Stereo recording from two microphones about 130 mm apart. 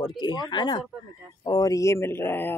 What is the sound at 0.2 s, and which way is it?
Speech, 35° left (ahead or behind).